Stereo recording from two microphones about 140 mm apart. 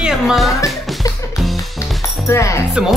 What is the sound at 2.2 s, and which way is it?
Speech, 20° left (ahead or behind).